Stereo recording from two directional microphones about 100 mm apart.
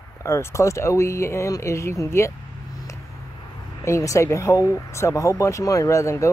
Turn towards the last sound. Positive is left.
turn(degrees=30)  # may be behind; listen again after turning